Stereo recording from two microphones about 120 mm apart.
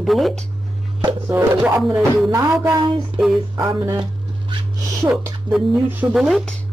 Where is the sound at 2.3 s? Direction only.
25° right (ahead or behind).